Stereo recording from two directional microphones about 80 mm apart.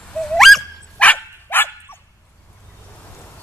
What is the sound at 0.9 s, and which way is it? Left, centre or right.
Dog, centre.